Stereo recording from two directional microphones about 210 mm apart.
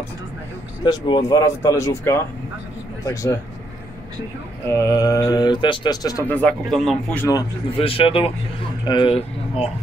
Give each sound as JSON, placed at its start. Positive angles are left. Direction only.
{"t": 0.8, "sound": "speech", "side_deg": 20}
{"t": 4.6, "sound": "speech", "side_deg": 15}
{"t": 7.2, "sound": "speech", "side_deg": 20}